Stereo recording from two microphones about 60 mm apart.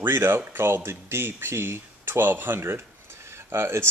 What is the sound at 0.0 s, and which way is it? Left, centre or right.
Speech, right.